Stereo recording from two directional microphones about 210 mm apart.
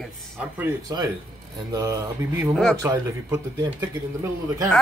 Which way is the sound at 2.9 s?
15° right (ahead or behind).